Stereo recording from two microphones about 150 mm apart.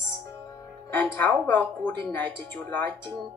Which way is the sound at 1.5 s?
10° left (ahead or behind).